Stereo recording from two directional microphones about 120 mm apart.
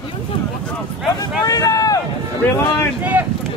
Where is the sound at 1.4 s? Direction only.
30° left (ahead or behind).